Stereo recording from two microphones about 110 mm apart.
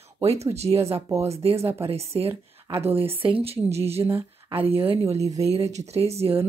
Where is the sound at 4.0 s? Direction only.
20° right (ahead or behind).